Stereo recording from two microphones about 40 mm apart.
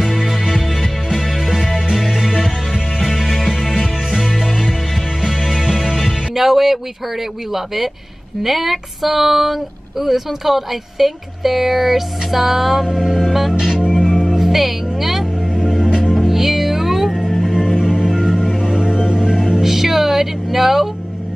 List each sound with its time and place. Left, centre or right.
0.2 s music: centre
3.1 s music: centre
7.5 s speech: centre
12.8 s music: centre
13.5 s music: centre
14.4 s speech: centre
15.5 s music: centre